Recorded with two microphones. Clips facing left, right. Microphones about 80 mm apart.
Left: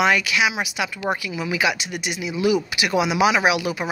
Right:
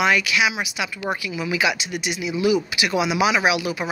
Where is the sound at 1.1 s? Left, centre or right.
Centre.